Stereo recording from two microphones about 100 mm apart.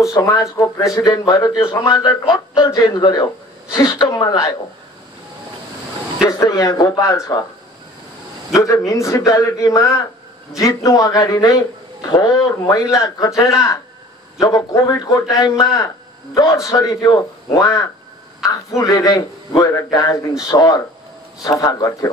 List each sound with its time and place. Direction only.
0.1 s a woman's voice: 35° left (ahead or behind)
6.2 s speech: 40° left (ahead or behind)
8.5 s speech: 35° left (ahead or behind)